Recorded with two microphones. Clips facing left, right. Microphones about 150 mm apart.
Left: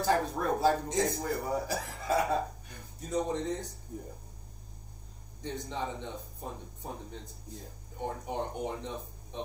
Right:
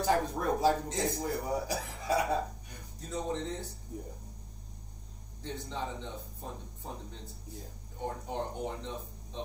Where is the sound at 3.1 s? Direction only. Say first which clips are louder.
Left 4 dB; 15° left (ahead or behind).